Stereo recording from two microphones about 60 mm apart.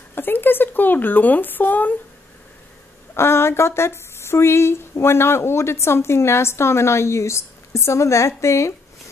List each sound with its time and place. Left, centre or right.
0.1 s speech: left
3.2 s speech: left